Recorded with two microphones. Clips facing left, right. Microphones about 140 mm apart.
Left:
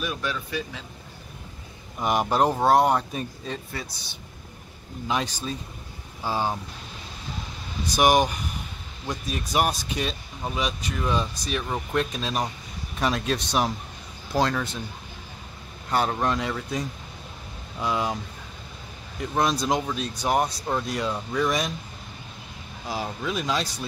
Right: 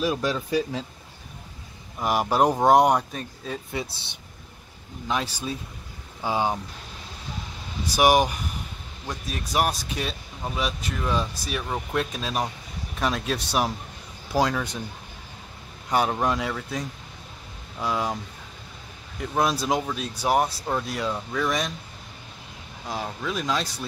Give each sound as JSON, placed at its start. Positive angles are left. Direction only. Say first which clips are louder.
{"t": 0.0, "sound": "speech", "louder": "right 5 dB", "side_deg": -35}
{"t": 2.0, "sound": "speech", "louder": "even", "side_deg": -5}
{"t": 3.7, "sound": "speech", "louder": "right 4 dB", "side_deg": -25}
{"t": 5.0, "sound": "speech", "louder": "left 1 dB", "side_deg": 0}
{"t": 5.3, "sound": "speech", "louder": "right 1 dB", "side_deg": -10}
{"t": 7.8, "sound": "speech", "louder": "right 1 dB", "side_deg": -10}
{"t": 15.9, "sound": "speech", "louder": "right 1 dB", "side_deg": -10}
{"t": 19.3, "sound": "speech", "louder": "even", "side_deg": -5}
{"t": 22.8, "sound": "speech", "louder": "left 1 dB", "side_deg": 5}